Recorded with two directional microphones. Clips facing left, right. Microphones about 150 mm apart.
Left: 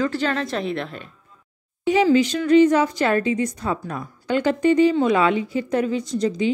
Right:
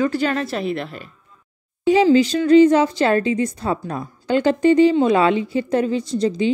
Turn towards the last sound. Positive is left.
turn(degrees=-30)  # may be behind; listen again after turning